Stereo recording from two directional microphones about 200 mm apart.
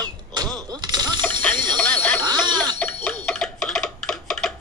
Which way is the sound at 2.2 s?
20° right (ahead or behind).